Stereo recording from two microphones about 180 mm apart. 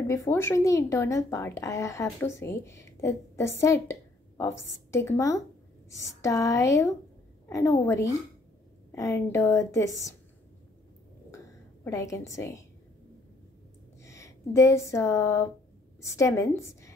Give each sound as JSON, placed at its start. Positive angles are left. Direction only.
{"t": 0.0, "sound": "a woman's voice", "side_deg": 15}
{"t": 11.3, "sound": "a sound", "side_deg": 15}
{"t": 14.0, "sound": "a woman's voice", "side_deg": 15}